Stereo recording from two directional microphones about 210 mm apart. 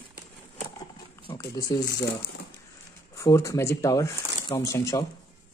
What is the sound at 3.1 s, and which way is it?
Speech, 15° left (ahead or behind).